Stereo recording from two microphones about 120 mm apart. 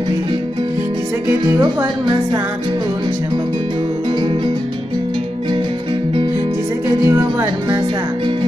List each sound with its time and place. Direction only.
7.1 s music: 25° right (ahead or behind)